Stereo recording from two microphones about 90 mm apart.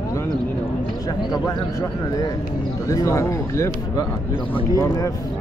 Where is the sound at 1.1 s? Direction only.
50° left (ahead or behind).